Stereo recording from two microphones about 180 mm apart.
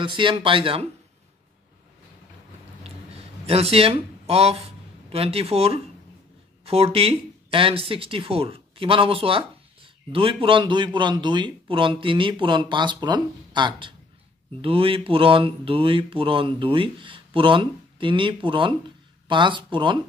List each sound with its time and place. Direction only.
0.0 s speech: 25° right (ahead or behind)
2.8 s a sound: 35° right (ahead or behind)
6.6 s speech: 35° right (ahead or behind)